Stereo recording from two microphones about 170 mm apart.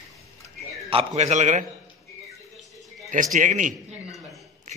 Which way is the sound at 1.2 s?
45° right (ahead or behind).